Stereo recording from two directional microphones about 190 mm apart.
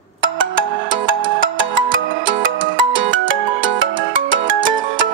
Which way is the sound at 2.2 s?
90° right.